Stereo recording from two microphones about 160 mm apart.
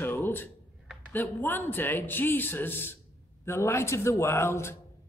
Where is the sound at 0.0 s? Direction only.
15° left (ahead or behind).